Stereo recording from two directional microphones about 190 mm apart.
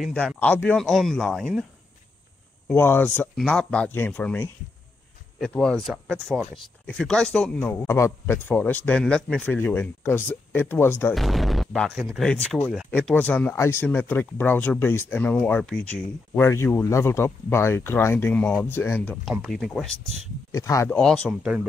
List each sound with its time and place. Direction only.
0.4 s speech: 5° left (ahead or behind)
2.7 s speech: 10° left (ahead or behind)
11.1 s speech: centre (ahead or behind)
19.2 s speech: centre (ahead or behind)
20.5 s speech: 15° left (ahead or behind)
20.9 s speech: 5° left (ahead or behind)